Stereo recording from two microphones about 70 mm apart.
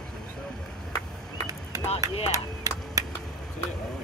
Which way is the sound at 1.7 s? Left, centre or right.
Right.